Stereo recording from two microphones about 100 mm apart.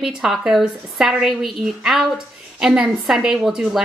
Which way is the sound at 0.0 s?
5° right (ahead or behind).